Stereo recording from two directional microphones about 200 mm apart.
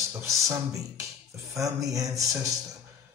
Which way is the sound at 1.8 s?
15° right (ahead or behind).